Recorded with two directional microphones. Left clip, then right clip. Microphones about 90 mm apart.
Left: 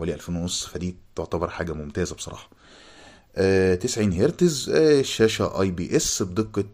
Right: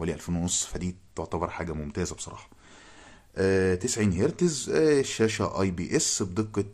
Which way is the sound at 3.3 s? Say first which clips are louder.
Left 4 dB; 20° left (ahead or behind).